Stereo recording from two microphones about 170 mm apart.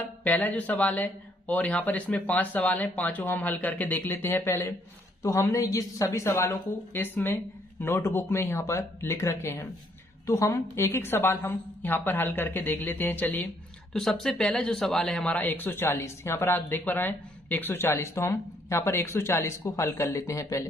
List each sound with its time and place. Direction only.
0.2 s speech: 10° left (ahead or behind)